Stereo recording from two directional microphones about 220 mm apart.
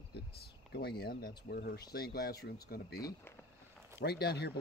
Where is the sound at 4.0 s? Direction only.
45° left (ahead or behind).